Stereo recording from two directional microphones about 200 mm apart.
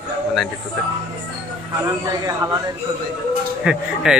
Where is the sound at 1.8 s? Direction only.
15° right (ahead or behind).